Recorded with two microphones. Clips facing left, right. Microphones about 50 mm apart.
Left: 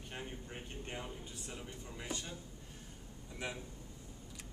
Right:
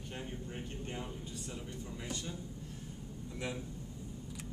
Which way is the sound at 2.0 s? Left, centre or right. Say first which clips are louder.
Even; centre.